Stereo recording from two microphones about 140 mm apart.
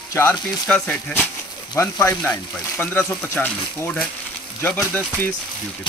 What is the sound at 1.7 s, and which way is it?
Speech, 20° left (ahead or behind).